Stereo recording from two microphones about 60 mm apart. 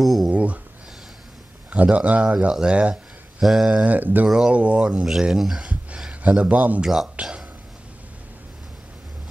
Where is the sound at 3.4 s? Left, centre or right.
Centre.